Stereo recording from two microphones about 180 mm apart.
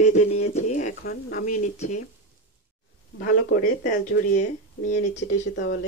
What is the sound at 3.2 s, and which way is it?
Speech, 55° left (ahead or behind).